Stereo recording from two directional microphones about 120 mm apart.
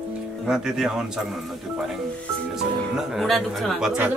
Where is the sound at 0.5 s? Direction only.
5° right (ahead or behind).